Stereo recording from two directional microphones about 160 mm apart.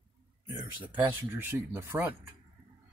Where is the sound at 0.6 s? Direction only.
15° right (ahead or behind).